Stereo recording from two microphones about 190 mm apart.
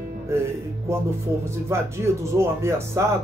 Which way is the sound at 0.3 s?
15° right (ahead or behind).